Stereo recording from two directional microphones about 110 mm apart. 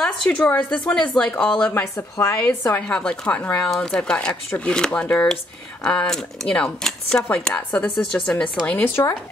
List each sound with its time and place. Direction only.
0.0 s speech: 10° left (ahead or behind)
1.7 s a woman's voice: 20° left (ahead or behind)
2.9 s speech: 10° left (ahead or behind)
8.6 s a woman's voice: 20° left (ahead or behind)